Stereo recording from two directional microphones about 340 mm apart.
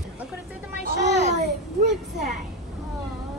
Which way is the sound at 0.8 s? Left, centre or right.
Right.